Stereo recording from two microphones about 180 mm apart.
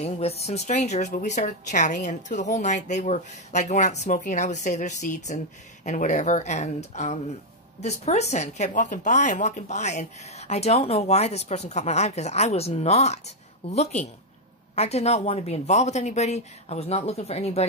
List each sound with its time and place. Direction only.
0.0 s a woman's voice: 35° left (ahead or behind)